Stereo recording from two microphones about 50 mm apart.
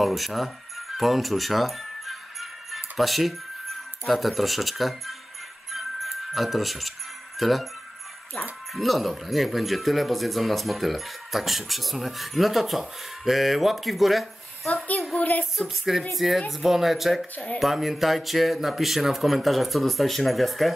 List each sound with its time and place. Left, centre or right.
0.0 s speech: centre
5.7 s music: centre
7.3 s speech: centre
8.7 s speech: centre
15.1 s speech: left
15.7 s speech: centre